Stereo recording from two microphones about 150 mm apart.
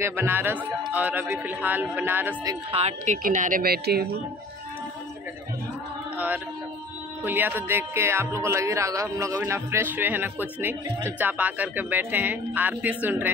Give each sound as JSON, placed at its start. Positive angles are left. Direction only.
{"t": 0.0, "sound": "speech", "side_deg": -15}
{"t": 2.7, "sound": "a woman's voice", "side_deg": -45}
{"t": 3.2, "sound": "speech", "side_deg": -60}
{"t": 6.1, "sound": "a sound", "side_deg": -10}
{"t": 7.2, "sound": "speech", "side_deg": -15}